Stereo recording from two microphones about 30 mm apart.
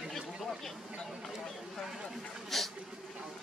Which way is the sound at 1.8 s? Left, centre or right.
Centre.